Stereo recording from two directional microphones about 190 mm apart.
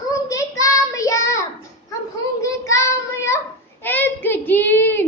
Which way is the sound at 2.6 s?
15° left (ahead or behind).